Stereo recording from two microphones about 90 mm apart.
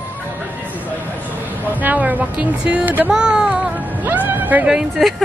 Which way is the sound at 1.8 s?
20° right (ahead or behind).